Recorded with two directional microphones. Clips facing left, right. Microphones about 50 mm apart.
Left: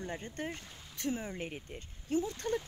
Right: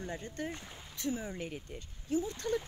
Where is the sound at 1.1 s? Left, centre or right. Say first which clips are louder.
Even; left.